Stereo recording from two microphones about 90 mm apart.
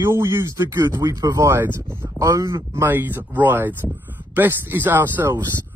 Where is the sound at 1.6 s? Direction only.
25° right (ahead or behind).